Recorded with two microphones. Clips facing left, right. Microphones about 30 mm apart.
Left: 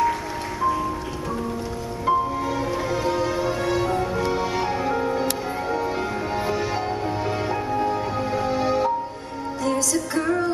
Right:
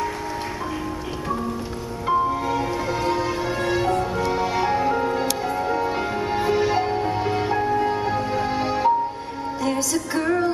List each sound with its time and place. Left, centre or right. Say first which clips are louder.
2.0 s music: right 1 dB; centre